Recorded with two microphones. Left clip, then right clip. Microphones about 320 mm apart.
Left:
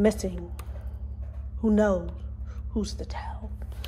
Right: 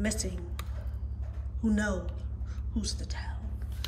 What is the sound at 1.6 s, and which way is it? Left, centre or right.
Speech, centre.